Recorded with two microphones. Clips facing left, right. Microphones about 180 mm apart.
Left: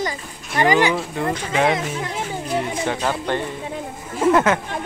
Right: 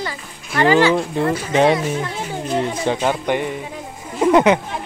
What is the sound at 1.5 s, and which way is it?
Speech, 25° right (ahead or behind).